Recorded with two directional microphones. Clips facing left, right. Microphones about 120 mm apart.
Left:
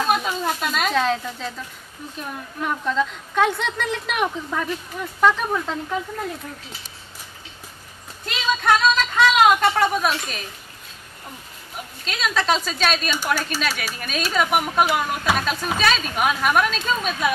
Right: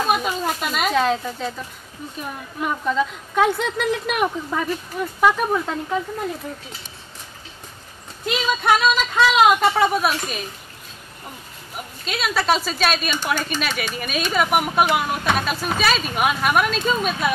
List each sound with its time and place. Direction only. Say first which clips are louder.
0.0 s speech: right 1 dB; 5° right (ahead or behind)
2.6 s a woman's voice: right 1 dB; 5° right (ahead or behind)
8.3 s a woman's voice: right 1 dB; 5° right (ahead or behind)
12.0 s speech: right 1 dB; 5° right (ahead or behind)